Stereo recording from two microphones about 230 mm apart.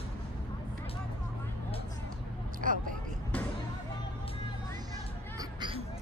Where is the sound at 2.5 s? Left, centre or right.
Right.